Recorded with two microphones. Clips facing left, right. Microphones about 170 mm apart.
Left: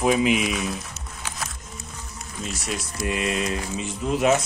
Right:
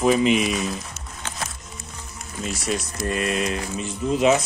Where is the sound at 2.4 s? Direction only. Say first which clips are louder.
Right 4 dB; centre (ahead or behind).